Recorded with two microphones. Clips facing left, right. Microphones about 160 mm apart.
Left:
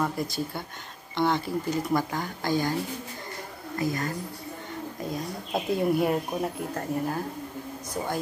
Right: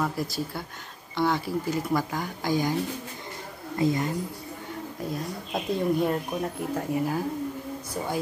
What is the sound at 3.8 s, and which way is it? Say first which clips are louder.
Speech: right 4 dB; 20° right (ahead or behind).